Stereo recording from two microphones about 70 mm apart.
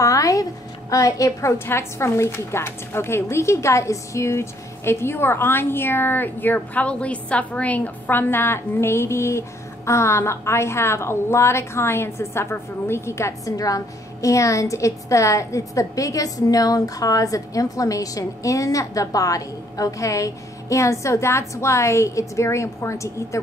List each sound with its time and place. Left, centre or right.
0.0 s a woman's voice: left
1.7 s a woman's voice: left
13.6 s a woman's voice: left